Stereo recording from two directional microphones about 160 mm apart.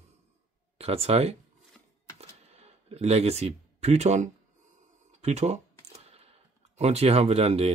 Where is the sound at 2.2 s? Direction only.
40° right (ahead or behind).